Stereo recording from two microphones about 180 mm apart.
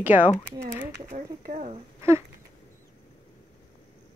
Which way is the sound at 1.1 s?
45° right (ahead or behind).